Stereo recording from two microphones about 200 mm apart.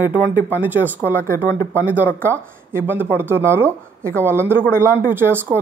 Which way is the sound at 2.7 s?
10° right (ahead or behind).